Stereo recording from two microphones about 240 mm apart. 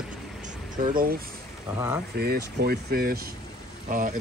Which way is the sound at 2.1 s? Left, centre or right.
Right.